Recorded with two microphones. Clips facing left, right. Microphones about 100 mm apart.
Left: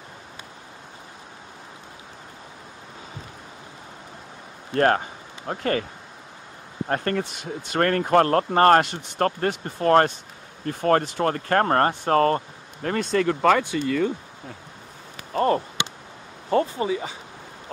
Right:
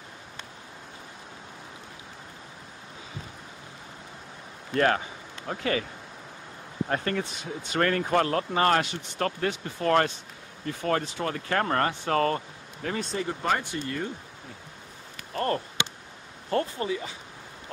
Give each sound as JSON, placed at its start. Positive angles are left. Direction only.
{"t": 4.7, "sound": "speech", "side_deg": 45}
{"t": 6.9, "sound": "speech", "side_deg": 50}
{"t": 12.9, "sound": "speech", "side_deg": 70}
{"t": 15.3, "sound": "speech", "side_deg": 15}